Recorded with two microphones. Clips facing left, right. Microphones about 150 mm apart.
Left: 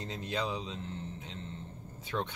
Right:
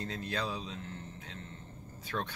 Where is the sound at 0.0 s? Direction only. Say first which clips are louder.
Left 1 dB; 20° left (ahead or behind).